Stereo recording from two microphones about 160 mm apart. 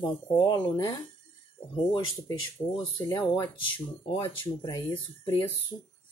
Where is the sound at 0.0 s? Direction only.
25° left (ahead or behind).